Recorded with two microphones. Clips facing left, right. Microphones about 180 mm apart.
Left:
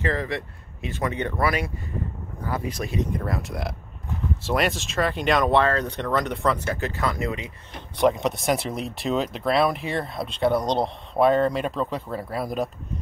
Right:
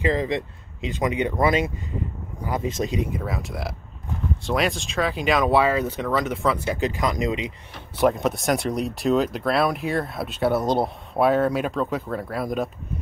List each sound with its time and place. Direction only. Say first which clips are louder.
0.0 s speech: right 4 dB; 15° right (ahead or behind)
3.1 s speech: left 1 dB; centre (ahead or behind); by 7.5 s 15° right (ahead or behind)
8.0 s speech: right 1 dB; centre (ahead or behind)